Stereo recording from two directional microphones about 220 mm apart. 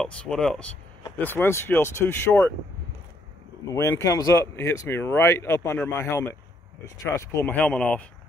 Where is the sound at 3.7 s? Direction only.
15° left (ahead or behind).